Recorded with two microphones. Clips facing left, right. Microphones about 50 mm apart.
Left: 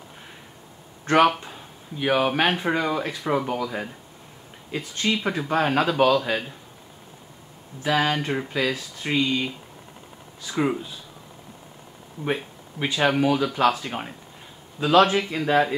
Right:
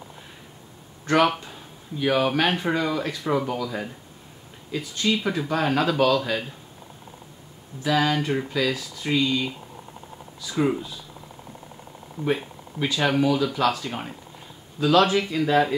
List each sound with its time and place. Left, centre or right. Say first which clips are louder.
1.1 s speech: left 2 dB; left
1.4 s speech: left 1 dB; left
3.4 s speech: left 1 dB; left
7.8 s speech: even; left
10.5 s speech: right 1 dB; centre
12.3 s speech: right 2 dB; left